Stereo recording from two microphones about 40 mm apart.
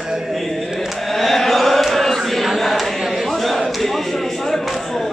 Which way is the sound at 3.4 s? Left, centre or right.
Centre.